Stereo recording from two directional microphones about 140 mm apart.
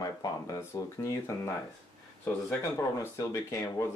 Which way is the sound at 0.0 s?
25° left (ahead or behind).